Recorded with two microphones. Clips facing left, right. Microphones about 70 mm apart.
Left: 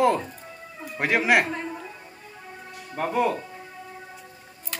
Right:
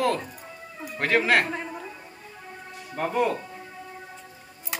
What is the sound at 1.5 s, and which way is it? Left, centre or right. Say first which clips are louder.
Speech: left 1 dB; centre.